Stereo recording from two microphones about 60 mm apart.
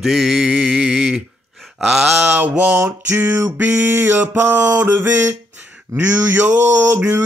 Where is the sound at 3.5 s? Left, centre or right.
Right.